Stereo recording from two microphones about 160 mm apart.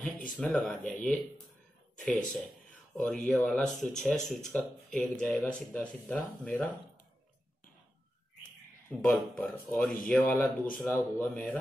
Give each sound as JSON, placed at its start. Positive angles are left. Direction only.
{"t": 0.4, "sound": "speech", "side_deg": 10}
{"t": 4.2, "sound": "speech", "side_deg": 50}
{"t": 4.5, "sound": "speech", "side_deg": 5}
{"t": 9.0, "sound": "speech", "side_deg": 5}